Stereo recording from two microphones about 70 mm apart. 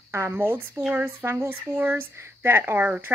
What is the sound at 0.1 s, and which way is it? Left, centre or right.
Speech, right.